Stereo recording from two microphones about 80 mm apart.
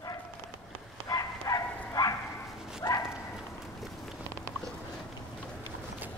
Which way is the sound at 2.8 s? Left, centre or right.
Left.